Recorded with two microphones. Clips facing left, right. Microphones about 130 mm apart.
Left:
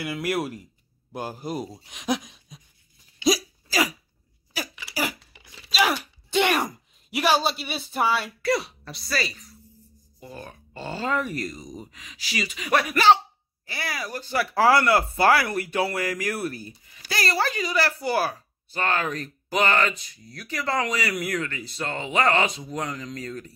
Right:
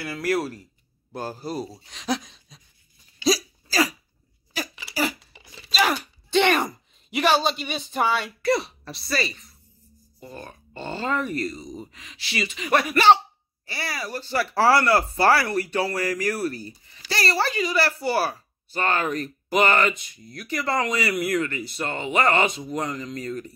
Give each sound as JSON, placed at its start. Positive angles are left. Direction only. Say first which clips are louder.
{"t": 0.0, "sound": "speech", "louder": "right 2 dB", "side_deg": 20}
{"t": 3.2, "sound": "hiccup", "louder": "even", "side_deg": 15}
{"t": 4.9, "sound": "a sound", "louder": "right 3 dB", "side_deg": 10}
{"t": 10.2, "sound": "speech", "louder": "right 1 dB", "side_deg": 5}